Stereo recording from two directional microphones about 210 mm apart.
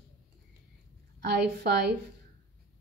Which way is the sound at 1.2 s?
55° right (ahead or behind).